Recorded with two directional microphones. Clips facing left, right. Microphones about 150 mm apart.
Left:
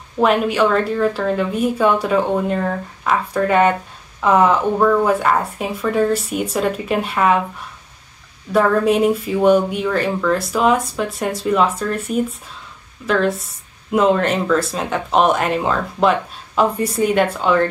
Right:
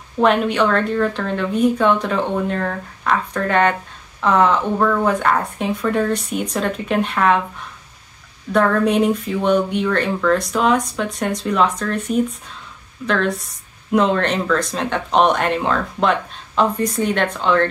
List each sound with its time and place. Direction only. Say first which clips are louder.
0.2 s speech: left 1 dB; 5° left (ahead or behind)
8.5 s speech: left 1 dB; 5° left (ahead or behind)